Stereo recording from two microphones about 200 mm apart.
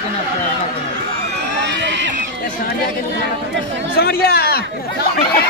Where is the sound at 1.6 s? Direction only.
65° right (ahead or behind).